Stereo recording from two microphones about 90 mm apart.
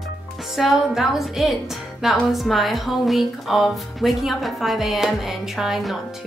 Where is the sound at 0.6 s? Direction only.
5° right (ahead or behind).